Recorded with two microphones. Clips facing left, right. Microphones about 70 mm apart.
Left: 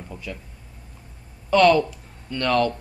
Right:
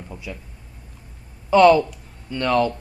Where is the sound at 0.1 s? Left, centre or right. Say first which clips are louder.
Even; centre.